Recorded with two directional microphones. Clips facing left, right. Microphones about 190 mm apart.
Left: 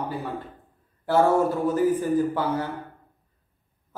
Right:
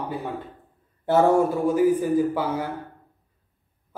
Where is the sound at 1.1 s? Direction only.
20° right (ahead or behind).